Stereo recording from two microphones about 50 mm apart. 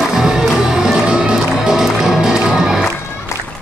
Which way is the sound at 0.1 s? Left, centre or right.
Centre.